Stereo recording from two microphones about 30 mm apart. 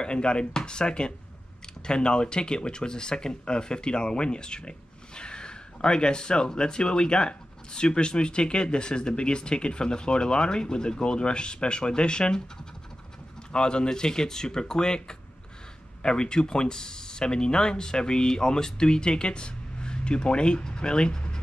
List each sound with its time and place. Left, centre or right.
0.0 s speech: left
13.5 s speech: left